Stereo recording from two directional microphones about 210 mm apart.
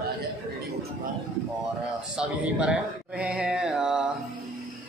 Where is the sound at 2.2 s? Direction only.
5° right (ahead or behind).